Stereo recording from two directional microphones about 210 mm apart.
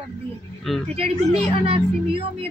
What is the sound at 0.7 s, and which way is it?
Speech, centre (ahead or behind).